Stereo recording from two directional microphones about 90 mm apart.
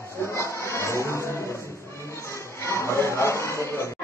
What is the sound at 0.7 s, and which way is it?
Music, 30° left (ahead or behind).